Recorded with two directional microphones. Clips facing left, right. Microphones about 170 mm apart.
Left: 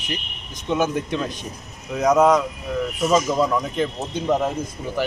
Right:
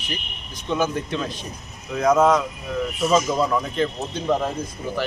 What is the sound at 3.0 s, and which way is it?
Speech, 5° left (ahead or behind).